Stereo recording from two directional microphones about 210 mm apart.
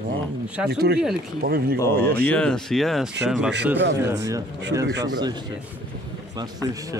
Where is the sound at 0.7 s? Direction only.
50° right (ahead or behind).